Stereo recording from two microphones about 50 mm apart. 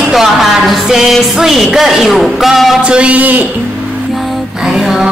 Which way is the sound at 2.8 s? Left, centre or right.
Right.